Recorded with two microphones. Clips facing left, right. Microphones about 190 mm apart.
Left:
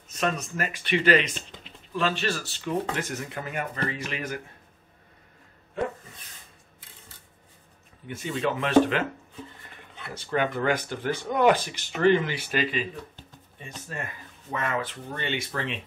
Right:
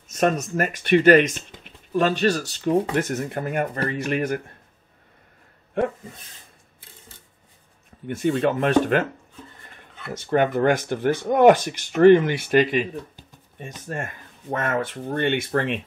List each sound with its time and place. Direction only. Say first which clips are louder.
0.1 s speech: right 7 dB; 45° right (ahead or behind)
8.1 s speech: right 7 dB; 50° right (ahead or behind)
10.3 s speech: right 6 dB; 50° right (ahead or behind)
13.8 s speech: right 6 dB; 50° right (ahead or behind)